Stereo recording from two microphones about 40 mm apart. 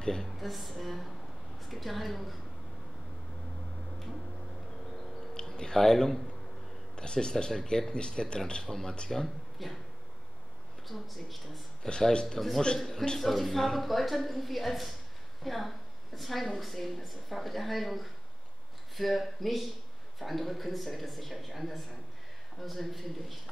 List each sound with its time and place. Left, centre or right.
0.2 s a woman's voice: centre
5.3 s a sound: centre
7.0 s speech: left
8.6 s a man's voice: centre
10.9 s a woman's voice: centre
11.8 s speech: centre
12.4 s a woman's voice: centre
13.2 s a woman's voice: centre